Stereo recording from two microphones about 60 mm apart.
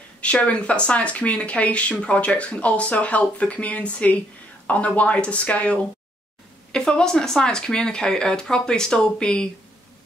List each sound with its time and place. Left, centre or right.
0.2 s speech: left